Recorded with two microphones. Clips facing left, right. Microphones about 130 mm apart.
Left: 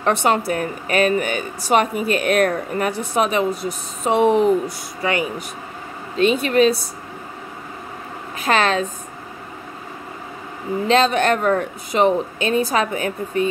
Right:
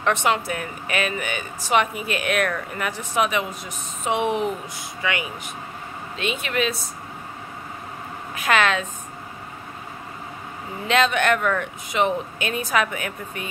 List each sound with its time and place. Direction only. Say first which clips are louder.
0.0 s speech: left 4 dB; 35° left (ahead or behind)
8.4 s a woman's voice: left 3 dB; 35° left (ahead or behind)
10.9 s speech: left 3 dB; 35° left (ahead or behind)